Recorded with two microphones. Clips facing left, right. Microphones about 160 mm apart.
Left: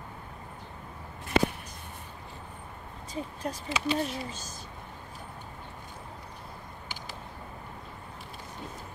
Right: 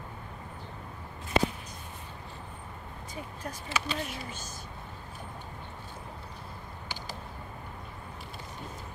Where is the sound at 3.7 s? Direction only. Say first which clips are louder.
Left 5 dB; 25° left (ahead or behind).